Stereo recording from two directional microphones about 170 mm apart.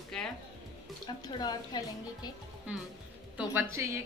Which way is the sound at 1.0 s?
25° left (ahead or behind).